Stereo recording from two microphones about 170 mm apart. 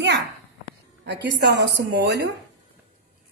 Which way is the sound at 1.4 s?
80° right.